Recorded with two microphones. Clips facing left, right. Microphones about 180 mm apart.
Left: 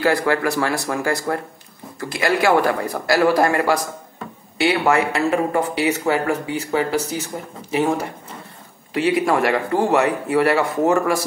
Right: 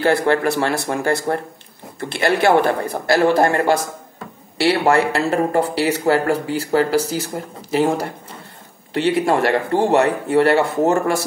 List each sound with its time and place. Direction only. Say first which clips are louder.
0.0 s a man's voice: right 2 dB; 30° right (ahead or behind)